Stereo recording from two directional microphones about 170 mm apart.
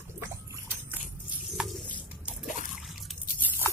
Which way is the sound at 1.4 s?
Centre (ahead or behind).